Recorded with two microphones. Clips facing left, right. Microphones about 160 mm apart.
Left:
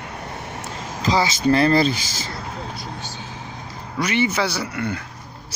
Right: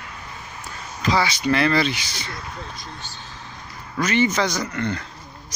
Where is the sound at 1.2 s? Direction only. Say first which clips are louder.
Left 3 dB; 35° left (ahead or behind).